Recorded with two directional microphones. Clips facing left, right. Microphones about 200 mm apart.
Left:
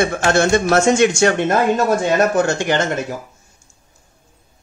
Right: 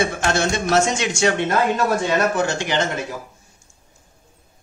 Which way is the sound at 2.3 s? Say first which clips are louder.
Left 4 dB; 50° left (ahead or behind).